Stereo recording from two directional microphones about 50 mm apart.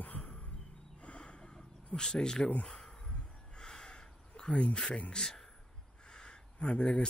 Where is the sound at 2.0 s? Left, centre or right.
Centre.